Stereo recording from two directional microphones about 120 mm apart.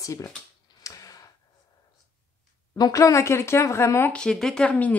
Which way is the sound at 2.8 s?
25° left (ahead or behind).